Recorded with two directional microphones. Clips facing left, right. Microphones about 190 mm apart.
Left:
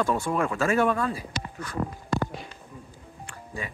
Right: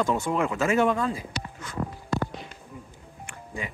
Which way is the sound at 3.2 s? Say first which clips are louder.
Right 1 dB; 20° right (ahead or behind).